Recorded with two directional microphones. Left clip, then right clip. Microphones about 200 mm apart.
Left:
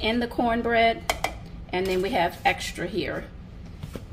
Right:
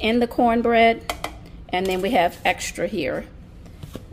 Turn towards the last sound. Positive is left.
turn(degrees=-45)  # may be behind; listen again after turning